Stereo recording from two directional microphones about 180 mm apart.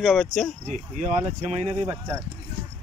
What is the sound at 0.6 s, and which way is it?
Speech, 40° right (ahead or behind).